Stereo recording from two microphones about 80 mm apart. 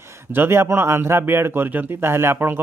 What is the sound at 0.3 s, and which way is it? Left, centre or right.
Speech, right.